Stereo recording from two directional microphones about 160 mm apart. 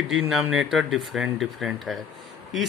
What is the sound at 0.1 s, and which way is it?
Speech, 5° right (ahead or behind).